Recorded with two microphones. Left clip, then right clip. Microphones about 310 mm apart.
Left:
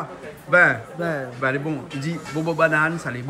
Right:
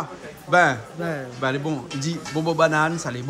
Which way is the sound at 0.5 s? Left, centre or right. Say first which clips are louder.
Left 2 dB; centre.